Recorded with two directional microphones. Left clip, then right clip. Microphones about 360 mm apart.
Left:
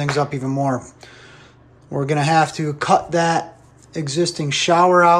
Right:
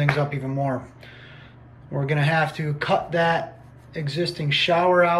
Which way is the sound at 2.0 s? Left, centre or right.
Centre.